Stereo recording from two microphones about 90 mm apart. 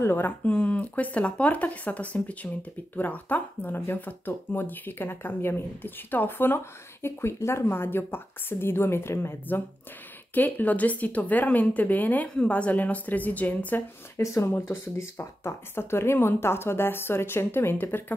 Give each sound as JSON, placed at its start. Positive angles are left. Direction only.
{"t": 0.0, "sound": "speech", "side_deg": 25}
{"t": 0.5, "sound": "speech", "side_deg": 15}
{"t": 14.2, "sound": "speech", "side_deg": 30}